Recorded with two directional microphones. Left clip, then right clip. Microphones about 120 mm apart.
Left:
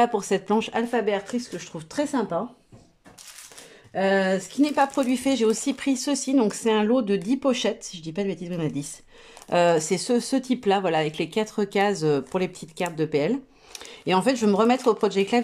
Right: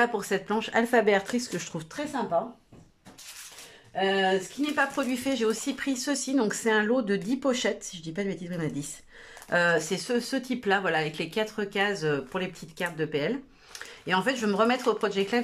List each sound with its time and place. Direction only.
0.0 s speech: 30° left (ahead or behind)
0.8 s speech: 5° left (ahead or behind)
2.1 s speech: 55° left (ahead or behind)
4.6 s speech: 45° left (ahead or behind)
4.9 s speech: 25° left (ahead or behind)